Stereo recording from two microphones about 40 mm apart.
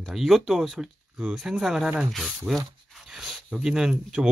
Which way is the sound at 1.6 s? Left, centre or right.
Centre.